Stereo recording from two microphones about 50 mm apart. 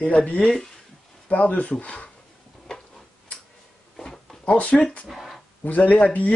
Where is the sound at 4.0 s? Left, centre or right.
Centre.